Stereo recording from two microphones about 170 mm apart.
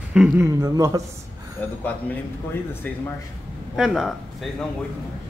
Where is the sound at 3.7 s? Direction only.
Centre (ahead or behind).